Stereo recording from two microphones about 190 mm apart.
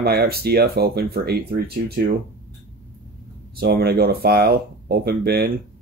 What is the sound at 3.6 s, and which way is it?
Speech, 55° right (ahead or behind).